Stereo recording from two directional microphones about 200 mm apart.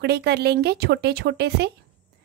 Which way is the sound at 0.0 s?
55° right (ahead or behind).